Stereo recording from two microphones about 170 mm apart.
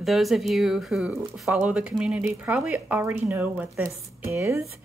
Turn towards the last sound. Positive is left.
turn(degrees=-15)  # may be behind; listen again after turning